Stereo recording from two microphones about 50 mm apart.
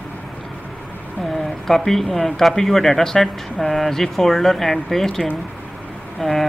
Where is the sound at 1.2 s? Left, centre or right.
Centre.